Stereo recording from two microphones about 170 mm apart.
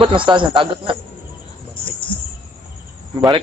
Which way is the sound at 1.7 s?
30° left (ahead or behind).